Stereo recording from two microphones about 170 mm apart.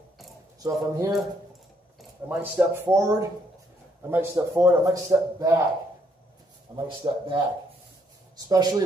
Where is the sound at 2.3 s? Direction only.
10° right (ahead or behind).